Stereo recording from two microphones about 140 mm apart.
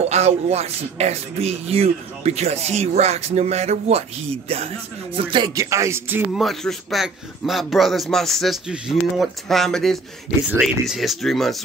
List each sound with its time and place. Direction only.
0.1 s speech: 50° right (ahead or behind)
5.1 s speech: 35° right (ahead or behind)
5.5 s speech: 20° right (ahead or behind)
6.3 s a man's voice: centre (ahead or behind)